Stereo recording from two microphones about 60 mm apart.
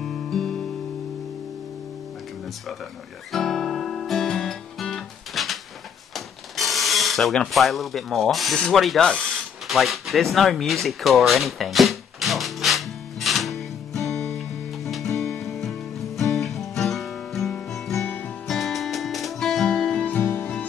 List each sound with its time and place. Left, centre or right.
0.0 s music: centre
3.3 s guitar: centre
6.1 s a sound: centre
7.5 s speech: centre
9.7 s a sound: centre
18.0 s music: left
18.5 s music: centre
19.7 s music: centre